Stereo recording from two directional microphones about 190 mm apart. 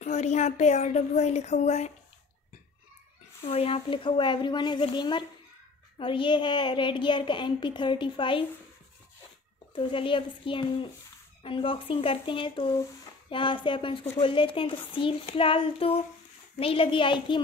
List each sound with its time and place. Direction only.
0.0 s speech: 35° left (ahead or behind)
3.4 s a woman's voice: 30° left (ahead or behind)
9.8 s a woman's voice: 25° left (ahead or behind)